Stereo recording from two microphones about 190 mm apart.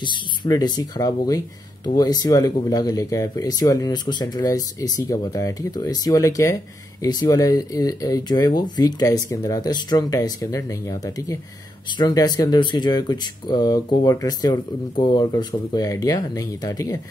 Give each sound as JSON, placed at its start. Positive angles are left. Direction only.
{"t": 0.0, "sound": "speech", "side_deg": 20}